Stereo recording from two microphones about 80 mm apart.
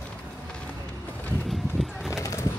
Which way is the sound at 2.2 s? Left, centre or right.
Left.